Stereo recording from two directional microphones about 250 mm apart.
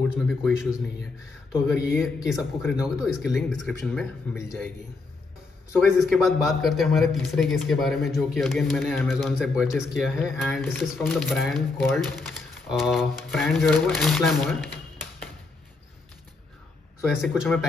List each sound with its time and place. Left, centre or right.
0.3 s a man's voice: centre
1.9 s a man's voice: centre
5.8 s a man's voice: centre
17.2 s a man's voice: centre